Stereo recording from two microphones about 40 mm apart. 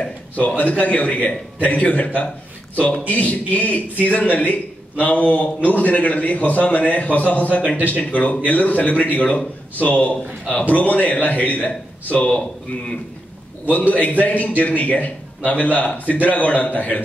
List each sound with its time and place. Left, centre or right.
0.6 s a man's voice: left
12.3 s a man's voice: left
13.7 s a man's voice: left